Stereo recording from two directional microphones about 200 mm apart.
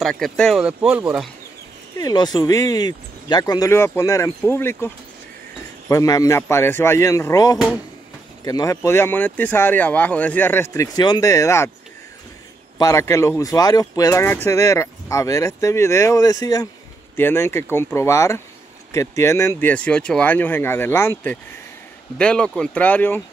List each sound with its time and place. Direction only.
0.0 s speech: 5° left (ahead or behind)
2.0 s speech: 20° left (ahead or behind)
12.7 s speech: 15° left (ahead or behind)